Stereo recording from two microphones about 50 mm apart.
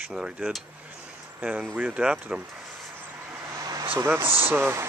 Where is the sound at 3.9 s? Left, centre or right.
Right.